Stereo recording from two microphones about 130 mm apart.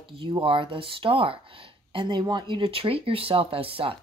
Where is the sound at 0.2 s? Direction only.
40° right (ahead or behind).